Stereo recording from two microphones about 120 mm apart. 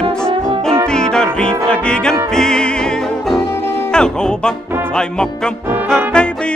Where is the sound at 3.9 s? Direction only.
5° left (ahead or behind).